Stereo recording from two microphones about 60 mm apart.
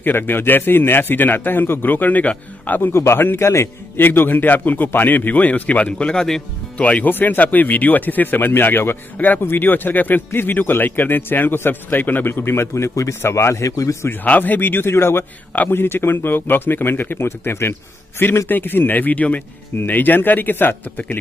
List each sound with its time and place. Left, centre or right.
0.0 s speech: left
2.9 s speech: left
4.0 s speech: left; by 6.4 s centre
6.8 s speech: left
14.2 s speech: left